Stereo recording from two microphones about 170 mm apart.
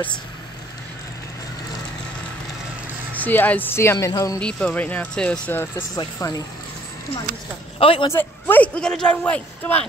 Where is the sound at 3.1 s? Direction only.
10° left (ahead or behind).